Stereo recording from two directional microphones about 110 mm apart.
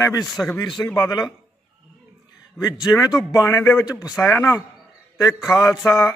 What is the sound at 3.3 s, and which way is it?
Speech, 25° left (ahead or behind).